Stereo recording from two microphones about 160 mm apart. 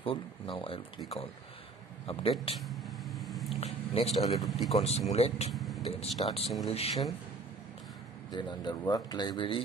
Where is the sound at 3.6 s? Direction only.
40° left (ahead or behind).